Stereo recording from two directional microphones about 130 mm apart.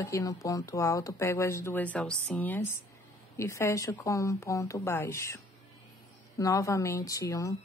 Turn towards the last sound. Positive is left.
turn(degrees=25)  # may be behind; listen again after turning